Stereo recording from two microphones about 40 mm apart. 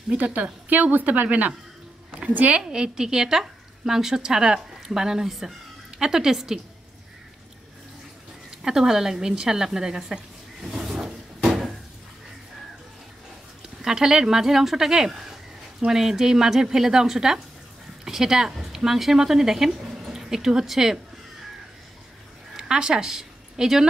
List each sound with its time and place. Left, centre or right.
0.2 s a woman's voice: right
2.5 s a woman's voice: centre
8.6 s a woman's voice: centre
10.6 s drawer open or close: centre
13.8 s a woman's voice: centre
22.6 s a woman's voice: centre